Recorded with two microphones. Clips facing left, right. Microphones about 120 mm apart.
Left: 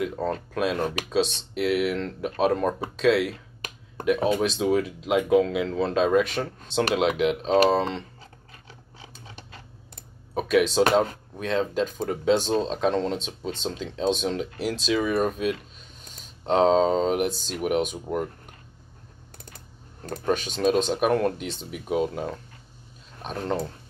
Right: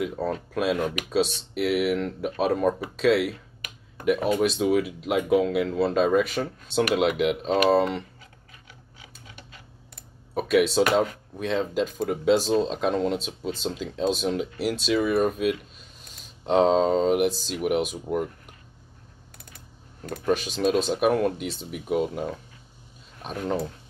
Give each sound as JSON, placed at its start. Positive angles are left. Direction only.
{"t": 0.0, "sound": "speech", "side_deg": -5}
{"t": 3.6, "sound": "a sound", "side_deg": 30}
{"t": 4.3, "sound": "speech", "side_deg": 0}
{"t": 10.3, "sound": "speech", "side_deg": 0}
{"t": 20.2, "sound": "speech", "side_deg": -5}
{"t": 23.4, "sound": "speech", "side_deg": 0}